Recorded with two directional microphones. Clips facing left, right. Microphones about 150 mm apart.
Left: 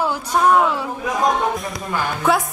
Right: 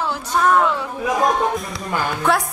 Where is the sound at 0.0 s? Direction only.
10° left (ahead or behind).